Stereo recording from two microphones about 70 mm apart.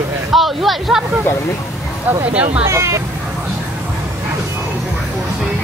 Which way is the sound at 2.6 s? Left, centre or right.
Right.